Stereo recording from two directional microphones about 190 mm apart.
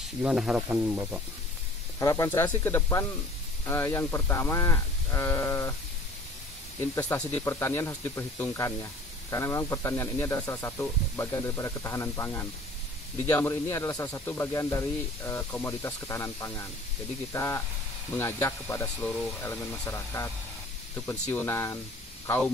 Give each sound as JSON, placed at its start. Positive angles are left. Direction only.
{"t": 0.2, "sound": "speech", "side_deg": -5}
{"t": 2.0, "sound": "speech", "side_deg": 15}
{"t": 7.0, "sound": "speech", "side_deg": 10}